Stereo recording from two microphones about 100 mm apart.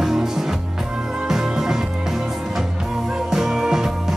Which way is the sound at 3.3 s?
5° right (ahead or behind).